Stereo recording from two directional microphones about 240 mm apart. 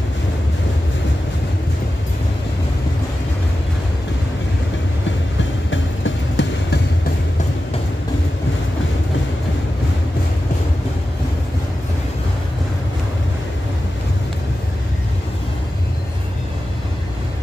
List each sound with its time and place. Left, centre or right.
5.7 s music: left